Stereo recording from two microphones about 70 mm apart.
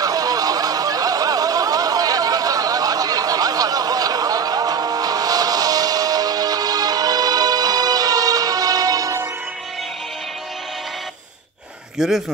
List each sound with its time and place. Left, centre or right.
0.0 s snicker: right
12.0 s speech: centre